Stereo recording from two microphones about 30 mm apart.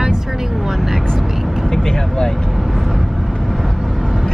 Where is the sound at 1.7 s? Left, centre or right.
Centre.